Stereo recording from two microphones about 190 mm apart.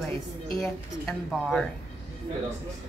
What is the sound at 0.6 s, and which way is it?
Speech, centre (ahead or behind).